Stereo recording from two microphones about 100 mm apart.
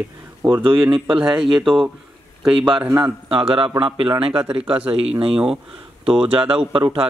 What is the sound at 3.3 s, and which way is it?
A man's voice, 60° right (ahead or behind).